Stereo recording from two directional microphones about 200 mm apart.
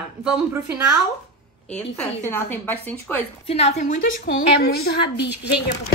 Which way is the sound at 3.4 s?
30° left (ahead or behind).